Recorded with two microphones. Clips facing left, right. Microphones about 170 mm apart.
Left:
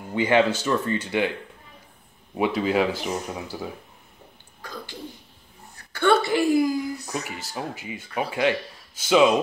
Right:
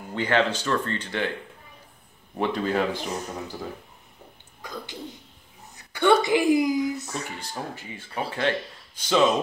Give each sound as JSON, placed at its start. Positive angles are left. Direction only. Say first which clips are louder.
{"t": 0.1, "sound": "speech", "louder": "left 4 dB", "side_deg": 10}
{"t": 2.3, "sound": "speech", "louder": "left 3 dB", "side_deg": 10}
{"t": 4.6, "sound": "a sound", "louder": "right 1 dB", "side_deg": -20}
{"t": 5.9, "sound": "a woman's voice", "louder": "even", "side_deg": -15}
{"t": 7.2, "sound": "speech", "louder": "left 2 dB", "side_deg": 5}